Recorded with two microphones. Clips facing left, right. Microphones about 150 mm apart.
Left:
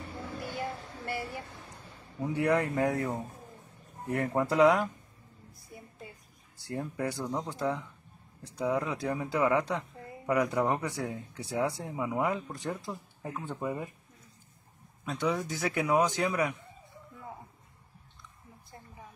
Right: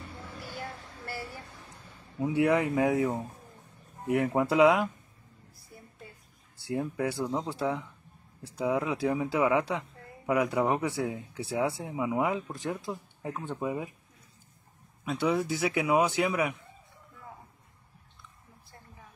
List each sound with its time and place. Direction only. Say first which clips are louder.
2.1 s speech: right 2 dB; 5° right (ahead or behind)
6.7 s speech: right 3 dB; 5° right (ahead or behind)
15.0 s speech: right 3 dB; 5° right (ahead or behind)